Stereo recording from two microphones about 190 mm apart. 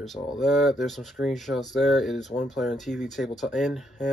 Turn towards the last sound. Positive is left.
turn(degrees=0)  # may be behind; listen again after turning